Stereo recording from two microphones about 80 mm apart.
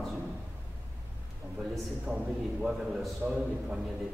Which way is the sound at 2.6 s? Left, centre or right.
Centre.